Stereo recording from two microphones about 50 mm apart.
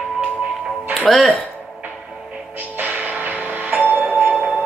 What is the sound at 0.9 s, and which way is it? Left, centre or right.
Speech, centre.